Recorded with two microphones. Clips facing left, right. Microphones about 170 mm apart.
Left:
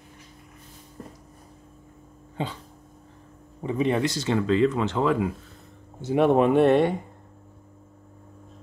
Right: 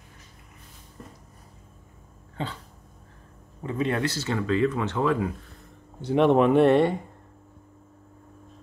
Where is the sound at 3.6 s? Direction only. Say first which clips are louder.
Left 3 dB; 15° left (ahead or behind); by 6.9 s centre (ahead or behind).